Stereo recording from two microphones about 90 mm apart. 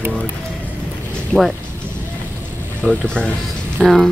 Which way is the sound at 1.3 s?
10° left (ahead or behind).